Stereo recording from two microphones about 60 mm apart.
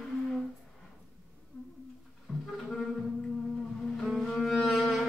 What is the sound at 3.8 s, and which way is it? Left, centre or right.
Cello, centre.